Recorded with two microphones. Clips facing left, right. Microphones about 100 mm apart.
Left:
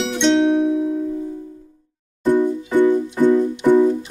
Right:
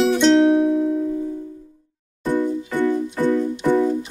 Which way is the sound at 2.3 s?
20° left (ahead or behind).